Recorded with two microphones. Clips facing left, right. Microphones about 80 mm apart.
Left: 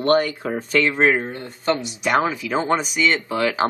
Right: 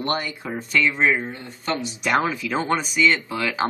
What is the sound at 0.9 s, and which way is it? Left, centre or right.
Speech, left.